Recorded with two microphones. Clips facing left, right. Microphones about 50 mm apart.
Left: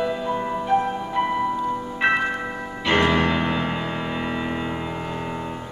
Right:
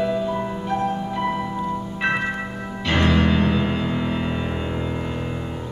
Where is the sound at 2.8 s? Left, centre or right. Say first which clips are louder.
Even; centre.